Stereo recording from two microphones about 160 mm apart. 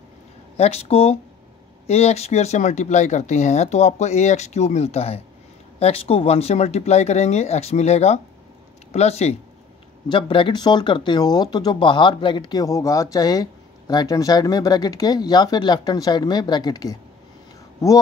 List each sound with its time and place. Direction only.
0.6 s speech: 40° left (ahead or behind)
10.0 s speech: 30° left (ahead or behind)